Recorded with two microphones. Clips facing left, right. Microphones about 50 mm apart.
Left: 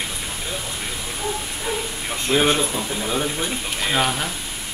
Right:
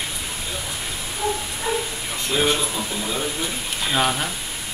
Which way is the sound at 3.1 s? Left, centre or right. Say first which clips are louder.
Left 4 dB; left.